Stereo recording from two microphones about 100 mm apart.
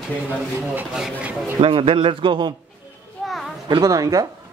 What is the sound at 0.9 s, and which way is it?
Speech, 5° right (ahead or behind).